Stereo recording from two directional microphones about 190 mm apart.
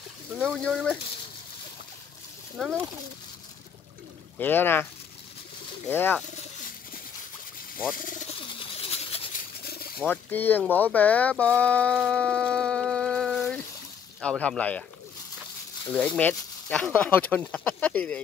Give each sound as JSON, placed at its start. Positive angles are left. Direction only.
{"t": 0.4, "sound": "speech", "side_deg": 5}
{"t": 2.6, "sound": "speech", "side_deg": 5}
{"t": 4.4, "sound": "speech", "side_deg": 10}
{"t": 5.9, "sound": "speech", "side_deg": 10}
{"t": 8.5, "sound": "a sound", "side_deg": 30}
{"t": 9.9, "sound": "speech", "side_deg": 10}
{"t": 16.2, "sound": "speech", "side_deg": 10}